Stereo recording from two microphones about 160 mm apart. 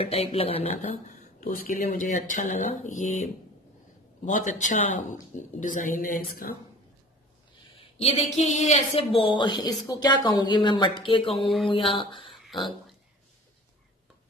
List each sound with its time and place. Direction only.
0.0 s speech: 40° left (ahead or behind); by 6.5 s 60° left (ahead or behind)
8.0 s a woman's voice: 40° left (ahead or behind)
11.4 s mantra: centre (ahead or behind)
11.7 s a woman's voice: 35° left (ahead or behind)